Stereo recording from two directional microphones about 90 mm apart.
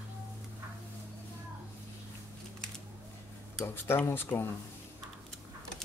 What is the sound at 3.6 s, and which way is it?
Speech, 25° left (ahead or behind).